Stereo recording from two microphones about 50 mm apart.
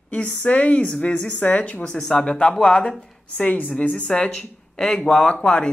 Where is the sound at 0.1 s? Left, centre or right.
Left.